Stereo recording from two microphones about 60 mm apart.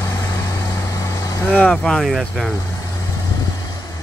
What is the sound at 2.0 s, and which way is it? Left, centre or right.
Speech, centre.